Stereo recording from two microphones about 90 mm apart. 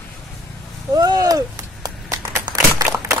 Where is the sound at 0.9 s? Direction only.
45° right (ahead or behind).